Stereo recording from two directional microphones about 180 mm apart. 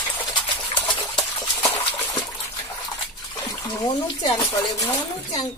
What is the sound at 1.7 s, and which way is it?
Water, 30° left (ahead or behind).